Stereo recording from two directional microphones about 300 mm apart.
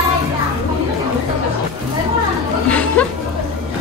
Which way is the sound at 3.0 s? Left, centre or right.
Centre.